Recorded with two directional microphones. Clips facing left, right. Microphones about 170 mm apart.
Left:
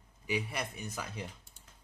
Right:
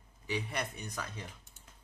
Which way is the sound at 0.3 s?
Centre (ahead or behind).